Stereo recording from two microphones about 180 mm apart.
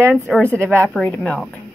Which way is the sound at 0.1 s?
5° left (ahead or behind).